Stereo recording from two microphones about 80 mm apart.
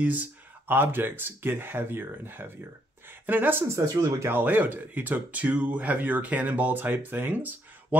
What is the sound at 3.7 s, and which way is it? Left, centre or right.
Speech, right.